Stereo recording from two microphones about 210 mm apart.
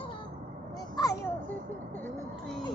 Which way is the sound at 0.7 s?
15° left (ahead or behind).